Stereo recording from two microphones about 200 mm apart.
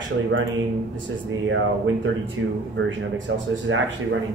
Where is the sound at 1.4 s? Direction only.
70° right (ahead or behind).